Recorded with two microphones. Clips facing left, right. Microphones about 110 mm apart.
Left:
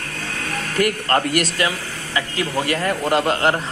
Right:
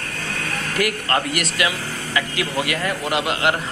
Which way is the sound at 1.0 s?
45° left (ahead or behind).